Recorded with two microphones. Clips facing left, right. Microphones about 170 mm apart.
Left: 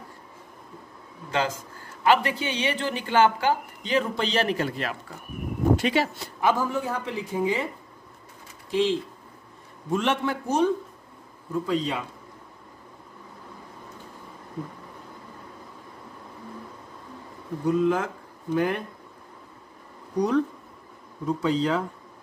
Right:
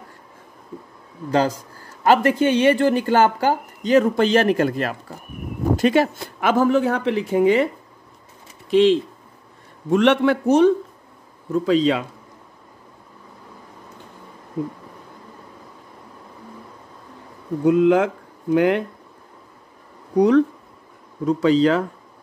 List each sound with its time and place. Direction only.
1.3 s a man's voice: 40° right (ahead or behind)
6.4 s a woman's voice: 75° right (ahead or behind)
11.5 s a man's voice: 85° right
17.6 s speech: 70° right (ahead or behind)
20.2 s a woman's voice: 70° right (ahead or behind)